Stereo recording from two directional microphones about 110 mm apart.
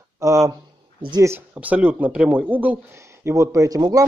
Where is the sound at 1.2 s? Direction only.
20° right (ahead or behind).